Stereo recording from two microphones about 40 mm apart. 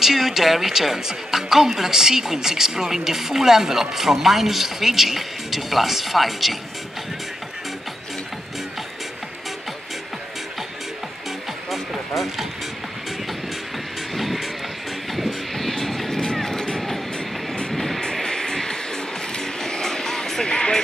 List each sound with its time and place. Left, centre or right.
0.0 s speech: centre
11.7 s music: centre
14.1 s vehicle: centre
17.7 s vehicle: centre
18.2 s music: centre
19.3 s vehicle: centre